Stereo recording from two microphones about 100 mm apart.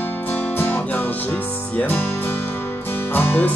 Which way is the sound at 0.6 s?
20° left (ahead or behind).